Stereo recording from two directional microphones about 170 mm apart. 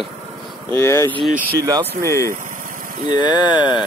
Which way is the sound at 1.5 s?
25° right (ahead or behind).